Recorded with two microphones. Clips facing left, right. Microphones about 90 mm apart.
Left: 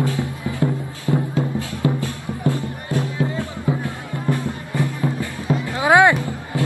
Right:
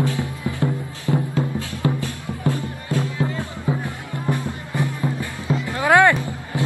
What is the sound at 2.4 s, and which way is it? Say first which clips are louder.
Music: left 1 dB; 20° left (ahead or behind).